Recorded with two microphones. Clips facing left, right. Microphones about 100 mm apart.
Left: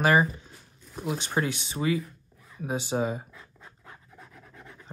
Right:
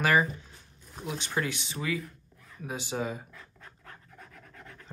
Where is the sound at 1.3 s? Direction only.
35° left (ahead or behind).